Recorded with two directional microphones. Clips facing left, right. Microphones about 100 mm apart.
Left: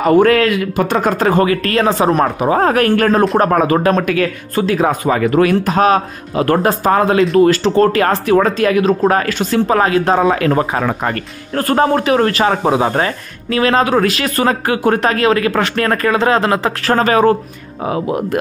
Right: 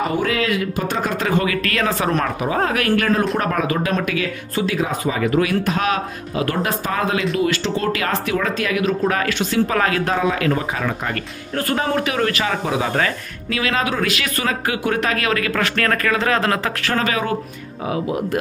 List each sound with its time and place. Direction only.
0.1 s a man's voice: 60° left (ahead or behind)
1.1 s a man's voice: 40° left (ahead or behind)
9.8 s speech: 30° left (ahead or behind)
10.2 s speech: 45° left (ahead or behind); by 16.7 s 25° left (ahead or behind)
16.8 s a man's voice: 40° left (ahead or behind)